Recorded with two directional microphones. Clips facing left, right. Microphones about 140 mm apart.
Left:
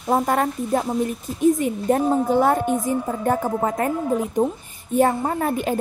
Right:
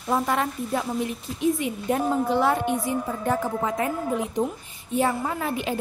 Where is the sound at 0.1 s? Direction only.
50° left (ahead or behind).